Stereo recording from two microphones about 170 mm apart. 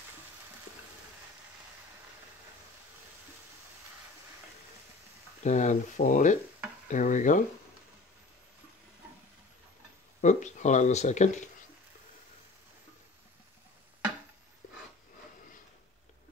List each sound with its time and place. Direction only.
5.4 s speech: 45° left (ahead or behind)
10.2 s speech: 45° left (ahead or behind)